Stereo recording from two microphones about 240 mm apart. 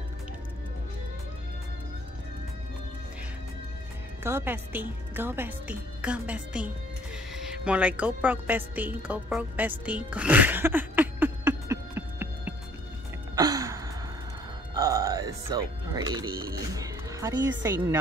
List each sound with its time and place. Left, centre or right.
4.2 s a woman's voice: centre
13.4 s gasp: centre
14.7 s music: centre
16.5 s a sound: centre
17.6 s speech: centre